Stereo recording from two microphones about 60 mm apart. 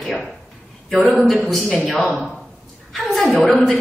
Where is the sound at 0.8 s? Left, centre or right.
Centre.